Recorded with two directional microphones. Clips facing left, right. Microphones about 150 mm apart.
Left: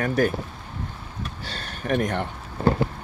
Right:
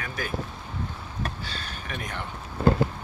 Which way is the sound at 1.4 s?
65° left (ahead or behind).